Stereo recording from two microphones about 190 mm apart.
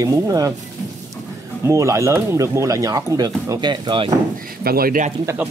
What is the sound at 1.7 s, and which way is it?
Speech, 15° right (ahead or behind).